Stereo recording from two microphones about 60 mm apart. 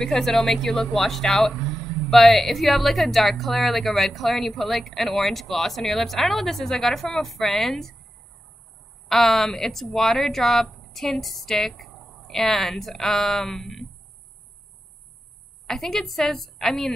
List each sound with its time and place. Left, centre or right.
0.0 s speech: centre
9.1 s speech: centre
15.6 s speech: centre